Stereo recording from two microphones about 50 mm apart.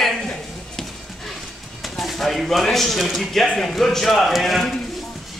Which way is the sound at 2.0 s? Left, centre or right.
Centre.